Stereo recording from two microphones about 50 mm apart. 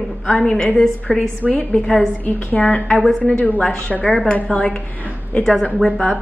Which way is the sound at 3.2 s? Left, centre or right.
Left.